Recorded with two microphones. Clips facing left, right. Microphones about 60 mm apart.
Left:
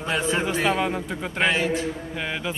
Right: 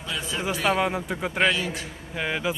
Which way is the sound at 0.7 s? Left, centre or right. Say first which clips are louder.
Even; centre.